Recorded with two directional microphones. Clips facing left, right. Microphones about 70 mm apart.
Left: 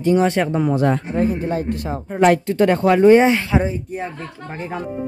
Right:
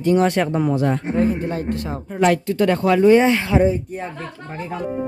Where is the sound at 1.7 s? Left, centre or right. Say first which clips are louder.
Left 1 dB; left.